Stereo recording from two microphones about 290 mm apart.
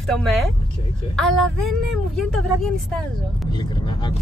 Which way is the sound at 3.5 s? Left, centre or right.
Centre.